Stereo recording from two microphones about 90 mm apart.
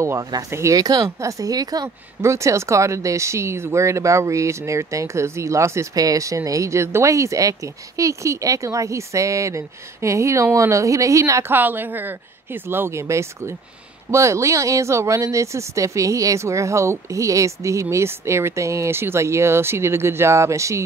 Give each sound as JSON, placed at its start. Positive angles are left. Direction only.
{"t": 0.0, "sound": "speech", "side_deg": -35}
{"t": 2.2, "sound": "speech", "side_deg": -35}
{"t": 11.5, "sound": "a woman's voice", "side_deg": -20}